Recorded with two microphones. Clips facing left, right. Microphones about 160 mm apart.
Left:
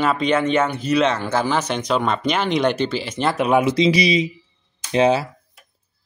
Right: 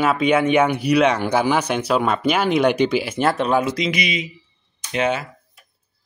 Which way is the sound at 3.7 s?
30° left (ahead or behind).